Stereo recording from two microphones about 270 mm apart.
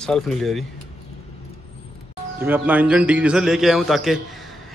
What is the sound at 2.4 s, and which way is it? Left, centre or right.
Speech, centre.